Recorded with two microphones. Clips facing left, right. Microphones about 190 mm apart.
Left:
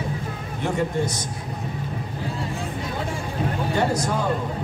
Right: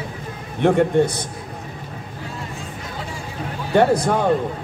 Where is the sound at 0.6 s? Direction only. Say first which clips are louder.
Right 8 dB; 60° right (ahead or behind).